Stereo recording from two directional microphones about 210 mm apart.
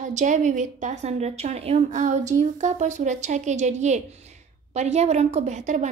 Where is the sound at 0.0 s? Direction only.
35° right (ahead or behind).